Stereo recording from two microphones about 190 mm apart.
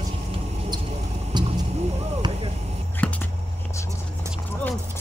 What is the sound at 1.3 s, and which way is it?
Vehicle, 25° right (ahead or behind).